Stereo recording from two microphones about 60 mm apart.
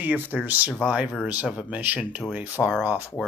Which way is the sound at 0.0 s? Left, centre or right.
Right.